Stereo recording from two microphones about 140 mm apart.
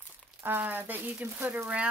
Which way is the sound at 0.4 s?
15° right (ahead or behind).